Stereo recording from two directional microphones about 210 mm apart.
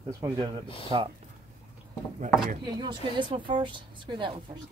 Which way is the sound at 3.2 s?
20° right (ahead or behind).